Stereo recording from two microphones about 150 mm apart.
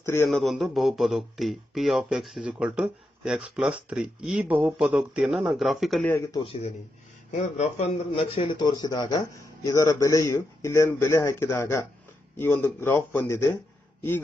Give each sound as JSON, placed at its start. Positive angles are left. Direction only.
{"t": 0.0, "sound": "speech", "side_deg": 15}
{"t": 0.3, "sound": "speech", "side_deg": 0}
{"t": 6.3, "sound": "a man's voice", "side_deg": 40}